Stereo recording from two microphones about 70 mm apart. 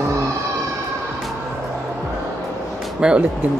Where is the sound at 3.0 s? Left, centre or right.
Centre.